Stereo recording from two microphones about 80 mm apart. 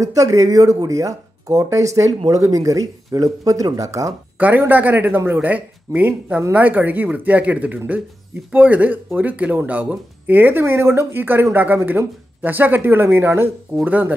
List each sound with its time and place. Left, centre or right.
0.0 s speech: right
4.4 s speech: right